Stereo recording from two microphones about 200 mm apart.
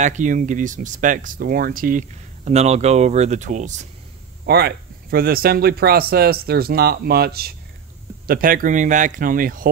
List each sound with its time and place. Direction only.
0.0 s speech: 40° right (ahead or behind)
4.5 s speech: 50° right (ahead or behind)